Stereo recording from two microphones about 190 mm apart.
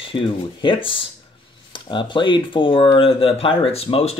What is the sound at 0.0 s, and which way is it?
Speech, 25° left (ahead or behind).